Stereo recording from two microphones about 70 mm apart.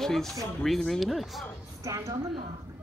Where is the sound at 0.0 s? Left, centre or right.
Centre.